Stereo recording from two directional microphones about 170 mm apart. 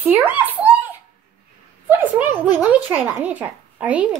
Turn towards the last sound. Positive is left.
turn(degrees=-10)  # may be behind; listen again after turning